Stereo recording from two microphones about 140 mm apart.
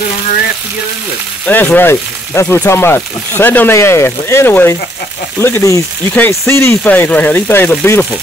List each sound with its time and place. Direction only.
1.5 s speech: 15° left (ahead or behind)